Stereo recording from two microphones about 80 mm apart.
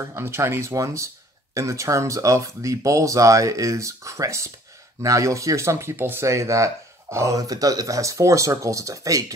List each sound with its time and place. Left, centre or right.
0.1 s speech: right